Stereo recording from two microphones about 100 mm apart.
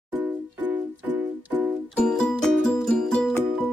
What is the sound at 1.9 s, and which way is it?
Music, 10° left (ahead or behind).